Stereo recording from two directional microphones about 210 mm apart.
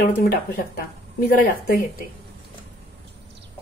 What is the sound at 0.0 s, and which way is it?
Speech, 50° left (ahead or behind).